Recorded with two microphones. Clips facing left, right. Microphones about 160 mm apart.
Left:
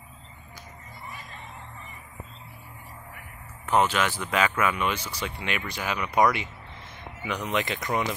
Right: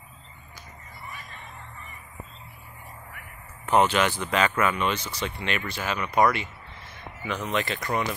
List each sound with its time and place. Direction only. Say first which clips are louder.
3.9 s speech: right 2 dB; 5° left (ahead or behind)